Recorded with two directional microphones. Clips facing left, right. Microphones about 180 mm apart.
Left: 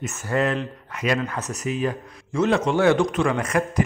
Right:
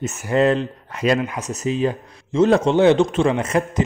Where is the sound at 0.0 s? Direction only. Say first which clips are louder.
Right 6 dB; 25° right (ahead or behind).